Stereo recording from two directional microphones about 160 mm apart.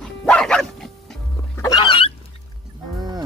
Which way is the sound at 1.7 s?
35° left (ahead or behind).